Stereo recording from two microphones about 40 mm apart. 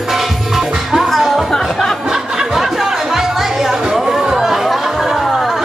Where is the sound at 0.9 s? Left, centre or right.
Centre.